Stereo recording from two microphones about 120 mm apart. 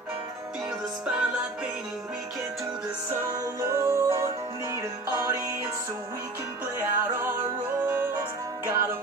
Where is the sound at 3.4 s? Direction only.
25° right (ahead or behind).